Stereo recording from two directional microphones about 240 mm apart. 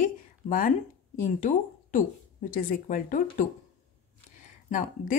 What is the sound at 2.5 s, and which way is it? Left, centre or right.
A woman's voice, left.